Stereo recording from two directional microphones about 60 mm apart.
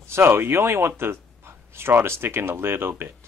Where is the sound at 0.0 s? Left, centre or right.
Right.